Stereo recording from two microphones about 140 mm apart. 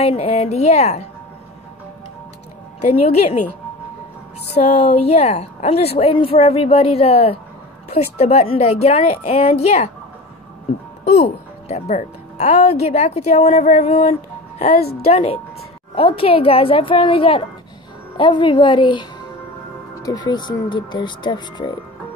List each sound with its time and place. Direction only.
0.0 s a woman's voice: 45° left (ahead or behind)
2.8 s a woman's voice: 50° left (ahead or behind)
4.6 s a woman's voice: 50° left (ahead or behind)
11.6 s a woman's voice: 55° left (ahead or behind)
14.7 s a woman's voice: 90° left
15.0 s a woman's voice: 45° left (ahead or behind); by 21.7 s 30° left (ahead or behind)